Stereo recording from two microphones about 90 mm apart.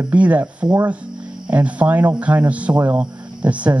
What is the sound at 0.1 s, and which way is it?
Speech, 15° right (ahead or behind).